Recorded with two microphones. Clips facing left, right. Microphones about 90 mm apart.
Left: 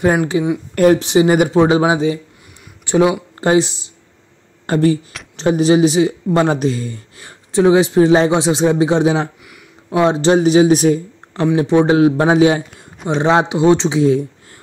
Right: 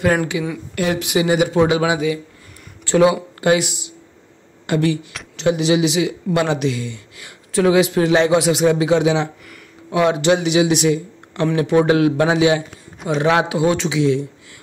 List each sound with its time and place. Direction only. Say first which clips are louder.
0.3 s speech: left 6 dB; 35° left (ahead or behind)
2.8 s speech: even; 15° left (ahead or behind)
3.3 s speech: left 3 dB; 30° left (ahead or behind)
11.5 s a man's voice: left 3 dB; 25° left (ahead or behind)
13.1 s a man's voice: left 2 dB; 30° left (ahead or behind)